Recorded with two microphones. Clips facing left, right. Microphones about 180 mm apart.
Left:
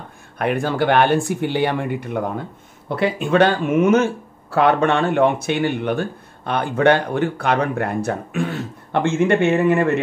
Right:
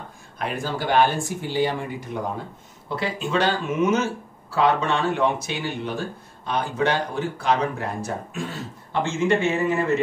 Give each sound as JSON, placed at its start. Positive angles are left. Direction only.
{"t": 0.4, "sound": "speech", "side_deg": 60}